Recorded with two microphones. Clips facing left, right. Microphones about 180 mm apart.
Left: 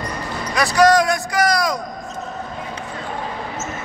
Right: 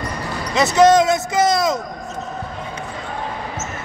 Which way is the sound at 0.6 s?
20° right (ahead or behind).